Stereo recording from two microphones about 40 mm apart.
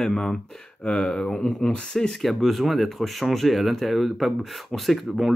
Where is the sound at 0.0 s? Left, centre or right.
Centre.